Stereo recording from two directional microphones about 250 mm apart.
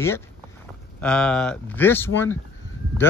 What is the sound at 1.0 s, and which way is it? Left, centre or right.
Speech, centre.